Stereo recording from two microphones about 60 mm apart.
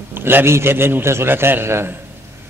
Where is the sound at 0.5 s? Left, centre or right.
Right.